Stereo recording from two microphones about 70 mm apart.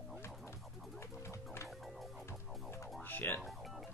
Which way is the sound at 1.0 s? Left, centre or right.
Left.